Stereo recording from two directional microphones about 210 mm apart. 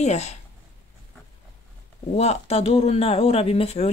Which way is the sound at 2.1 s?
30° left (ahead or behind).